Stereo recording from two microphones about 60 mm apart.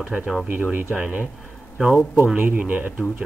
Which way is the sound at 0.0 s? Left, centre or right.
Right.